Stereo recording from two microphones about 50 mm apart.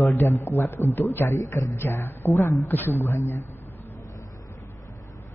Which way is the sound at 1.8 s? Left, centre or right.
Left.